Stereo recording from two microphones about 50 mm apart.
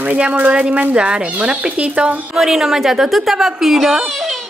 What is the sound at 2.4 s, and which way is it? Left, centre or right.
A woman's voice, centre.